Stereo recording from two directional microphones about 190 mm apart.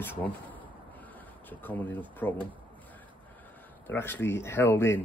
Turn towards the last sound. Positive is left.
turn(degrees=10)  # may be behind; listen again after turning